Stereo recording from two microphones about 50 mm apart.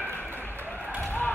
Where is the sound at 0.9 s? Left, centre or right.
Left.